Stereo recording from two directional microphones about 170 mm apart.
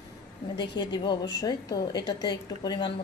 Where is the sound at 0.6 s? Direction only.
25° left (ahead or behind).